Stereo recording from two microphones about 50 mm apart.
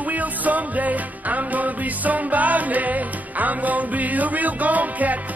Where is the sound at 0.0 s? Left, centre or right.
Right.